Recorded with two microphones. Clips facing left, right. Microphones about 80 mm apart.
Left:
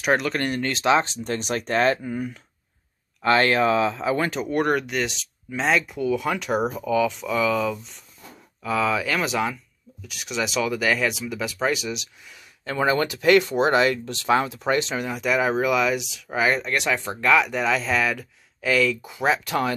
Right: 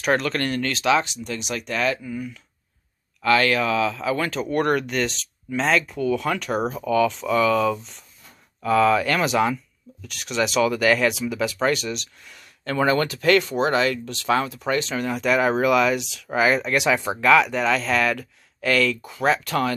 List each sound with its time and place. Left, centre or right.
0.0 s speech: centre; by 2.4 s left
3.2 s speech: left
4.4 s speech: centre
15.0 s speech: centre
17.3 s speech: centre